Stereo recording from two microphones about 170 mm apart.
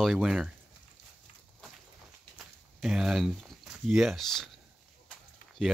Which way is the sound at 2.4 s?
5° right (ahead or behind).